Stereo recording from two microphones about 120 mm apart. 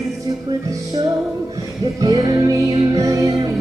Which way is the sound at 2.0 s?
30° right (ahead or behind).